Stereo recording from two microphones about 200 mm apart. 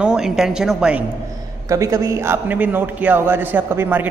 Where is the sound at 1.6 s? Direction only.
15° right (ahead or behind).